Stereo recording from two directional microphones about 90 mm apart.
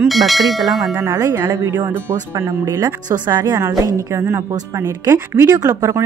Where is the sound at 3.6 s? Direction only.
30° right (ahead or behind).